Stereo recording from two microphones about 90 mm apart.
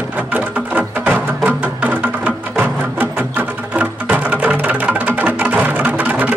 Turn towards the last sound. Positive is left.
turn(degrees=-20)  # may be behind; listen again after turning